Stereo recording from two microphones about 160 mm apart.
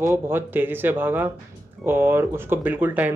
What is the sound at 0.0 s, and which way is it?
Speech, 15° right (ahead or behind).